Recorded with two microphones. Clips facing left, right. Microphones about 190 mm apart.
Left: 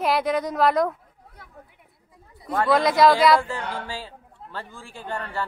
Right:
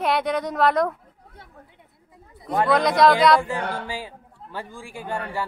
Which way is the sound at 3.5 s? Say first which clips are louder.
Right 3 dB; 15° right (ahead or behind).